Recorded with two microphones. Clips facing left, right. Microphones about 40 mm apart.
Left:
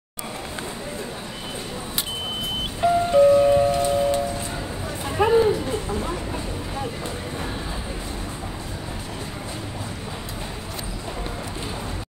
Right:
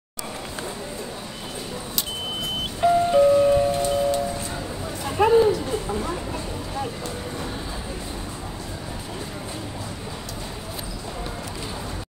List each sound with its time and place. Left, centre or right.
2.8 s music: centre
3.7 s vehicle: left
5.0 s a sound: centre
5.9 s vehicle: centre